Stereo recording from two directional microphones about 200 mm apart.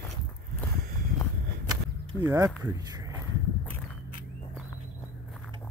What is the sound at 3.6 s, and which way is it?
Walk, 10° left (ahead or behind).